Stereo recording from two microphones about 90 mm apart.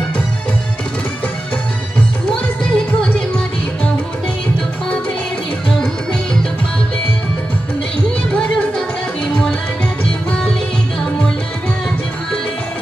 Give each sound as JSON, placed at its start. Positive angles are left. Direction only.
{"t": 2.6, "sound": "music", "side_deg": 10}
{"t": 8.3, "sound": "music", "side_deg": 10}